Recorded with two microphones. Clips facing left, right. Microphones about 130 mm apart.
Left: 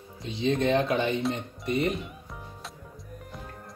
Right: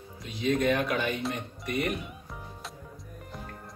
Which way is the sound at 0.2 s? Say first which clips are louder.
Left 1 dB; 25° left (ahead or behind).